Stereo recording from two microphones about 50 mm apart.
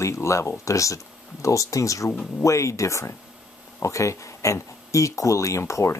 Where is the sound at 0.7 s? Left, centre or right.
Left.